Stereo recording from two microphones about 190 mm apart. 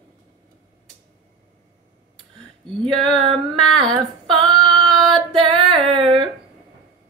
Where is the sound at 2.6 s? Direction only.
5° left (ahead or behind).